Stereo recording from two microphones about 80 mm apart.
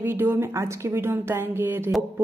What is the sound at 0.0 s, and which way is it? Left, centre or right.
A woman's voice, right.